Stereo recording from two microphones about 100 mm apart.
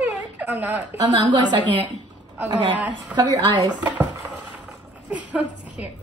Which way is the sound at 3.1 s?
40° right (ahead or behind).